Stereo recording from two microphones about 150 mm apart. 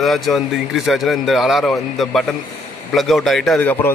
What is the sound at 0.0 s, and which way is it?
A man's voice, centre (ahead or behind).